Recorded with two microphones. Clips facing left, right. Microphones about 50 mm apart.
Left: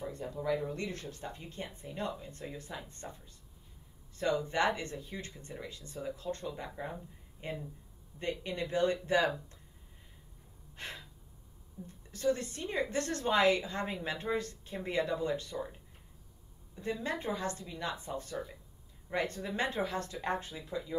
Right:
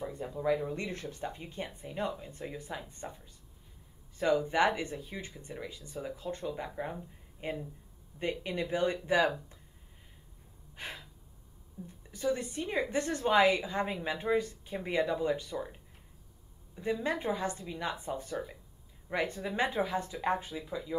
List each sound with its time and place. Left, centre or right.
0.0 s speech: centre
0.7 s speech: right
4.2 s speech: centre
10.8 s gasp: centre
12.1 s speech: centre
16.7 s speech: centre